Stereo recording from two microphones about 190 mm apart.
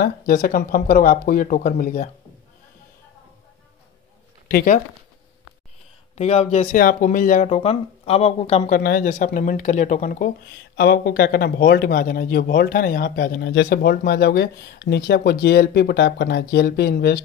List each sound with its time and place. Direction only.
0.0 s speech: 50° left (ahead or behind)
4.5 s speech: 45° left (ahead or behind)
6.1 s speech: 35° left (ahead or behind)
6.8 s speech: 45° left (ahead or behind)
7.4 s speech: 30° left (ahead or behind); by 17.2 s 55° left (ahead or behind)